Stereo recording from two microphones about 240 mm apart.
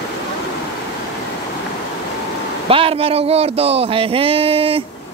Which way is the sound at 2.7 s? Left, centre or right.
Right.